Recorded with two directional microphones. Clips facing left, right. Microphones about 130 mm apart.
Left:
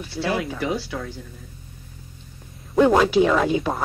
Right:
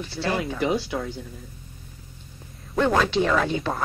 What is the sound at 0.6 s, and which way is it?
Speech, 20° right (ahead or behind).